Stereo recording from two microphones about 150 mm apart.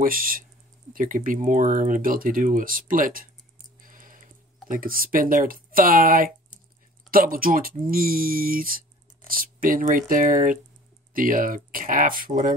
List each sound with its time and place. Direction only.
0.0 s speech: 70° right (ahead or behind)
3.8 s a sound: 65° right (ahead or behind)
4.6 s speech: 70° right (ahead or behind)